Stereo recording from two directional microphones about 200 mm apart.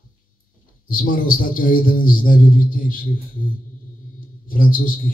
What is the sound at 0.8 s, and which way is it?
Speech, 45° left (ahead or behind).